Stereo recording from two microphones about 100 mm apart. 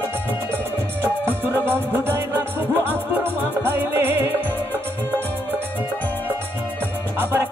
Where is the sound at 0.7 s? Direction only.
15° left (ahead or behind).